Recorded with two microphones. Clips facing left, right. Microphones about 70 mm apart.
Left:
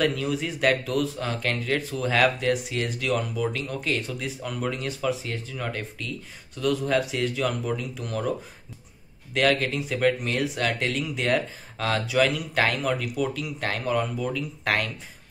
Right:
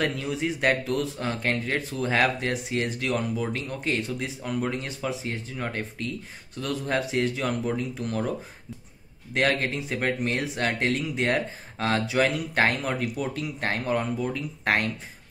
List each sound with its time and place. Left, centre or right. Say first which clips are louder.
0.0 s a man's voice: left 2 dB; right
9.3 s speech: left 2 dB; right